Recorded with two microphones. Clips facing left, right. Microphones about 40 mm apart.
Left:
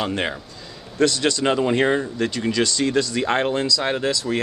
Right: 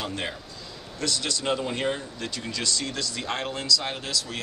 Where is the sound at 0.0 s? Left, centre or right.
Left.